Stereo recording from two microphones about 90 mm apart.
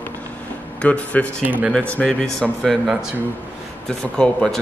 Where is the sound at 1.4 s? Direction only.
20° right (ahead or behind).